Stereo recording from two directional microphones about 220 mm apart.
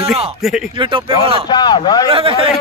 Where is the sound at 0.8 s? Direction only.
25° right (ahead or behind).